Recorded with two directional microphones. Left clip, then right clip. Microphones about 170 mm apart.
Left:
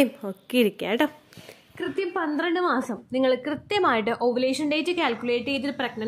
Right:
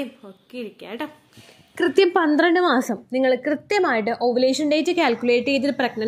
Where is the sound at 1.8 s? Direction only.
45° right (ahead or behind); by 3.0 s 25° right (ahead or behind).